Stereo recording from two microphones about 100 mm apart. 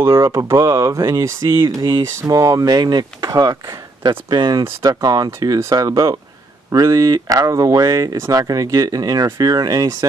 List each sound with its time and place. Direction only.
0.0 s speech: 30° right (ahead or behind)
2.2 s speech: 40° right (ahead or behind)